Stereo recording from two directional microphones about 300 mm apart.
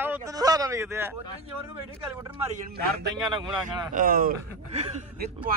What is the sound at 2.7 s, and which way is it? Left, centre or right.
A man's voice, right.